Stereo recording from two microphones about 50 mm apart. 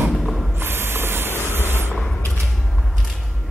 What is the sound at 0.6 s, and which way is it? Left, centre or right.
Printer, right.